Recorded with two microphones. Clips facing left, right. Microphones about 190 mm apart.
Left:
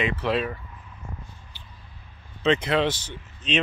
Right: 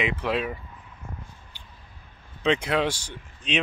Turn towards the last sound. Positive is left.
turn(degrees=-10)  # may be behind; listen again after turning